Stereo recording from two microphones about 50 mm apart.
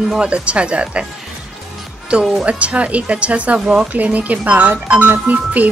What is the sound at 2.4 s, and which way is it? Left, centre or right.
A woman's voice, right.